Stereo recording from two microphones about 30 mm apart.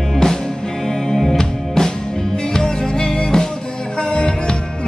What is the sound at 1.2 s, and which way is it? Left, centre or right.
Music, centre.